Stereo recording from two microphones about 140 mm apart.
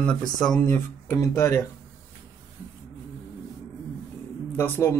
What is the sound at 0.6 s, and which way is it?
Speech, 15° left (ahead or behind).